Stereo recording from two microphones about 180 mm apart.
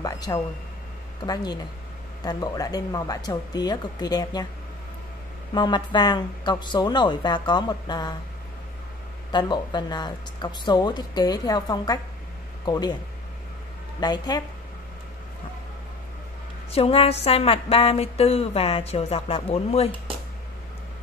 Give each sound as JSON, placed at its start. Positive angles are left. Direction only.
{"t": 0.0, "sound": "a sound", "side_deg": 20}
{"t": 1.2, "sound": "speech", "side_deg": 25}
{"t": 5.5, "sound": "speech", "side_deg": 25}
{"t": 9.3, "sound": "speech", "side_deg": 25}
{"t": 13.9, "sound": "speech", "side_deg": 20}
{"t": 16.7, "sound": "a sound", "side_deg": 30}